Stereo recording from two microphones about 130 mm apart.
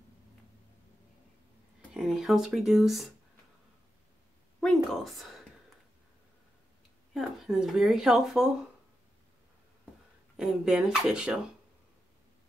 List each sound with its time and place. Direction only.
2.0 s speech: 5° right (ahead or behind)
4.6 s speech: centre (ahead or behind)
7.2 s speech: centre (ahead or behind)
10.3 s speech: 5° right (ahead or behind)